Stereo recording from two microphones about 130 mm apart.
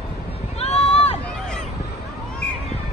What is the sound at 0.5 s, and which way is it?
Run, 55° left (ahead or behind).